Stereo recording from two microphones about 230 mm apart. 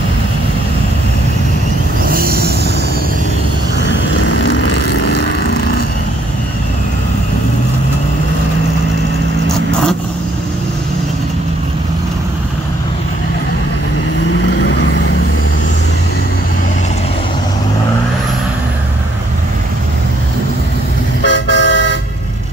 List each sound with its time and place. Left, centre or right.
2.0 s vehicle: right
14.6 s vehicle: left
21.2 s toot: left